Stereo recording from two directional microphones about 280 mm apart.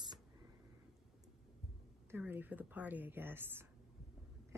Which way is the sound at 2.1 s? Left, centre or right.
Centre.